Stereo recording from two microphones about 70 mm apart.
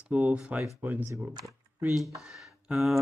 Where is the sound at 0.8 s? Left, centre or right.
Right.